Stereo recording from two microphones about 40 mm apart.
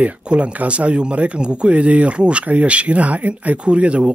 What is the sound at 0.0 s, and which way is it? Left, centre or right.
Speech, right.